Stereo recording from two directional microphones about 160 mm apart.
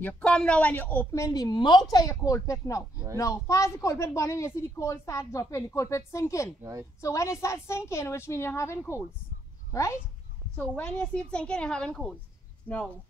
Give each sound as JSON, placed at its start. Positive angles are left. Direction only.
{"t": 0.0, "sound": "a woman's voice", "side_deg": 5}
{"t": 6.6, "sound": "a woman's voice", "side_deg": -20}
{"t": 7.0, "sound": "a woman's voice", "side_deg": 20}
{"t": 10.6, "sound": "a woman's voice", "side_deg": 10}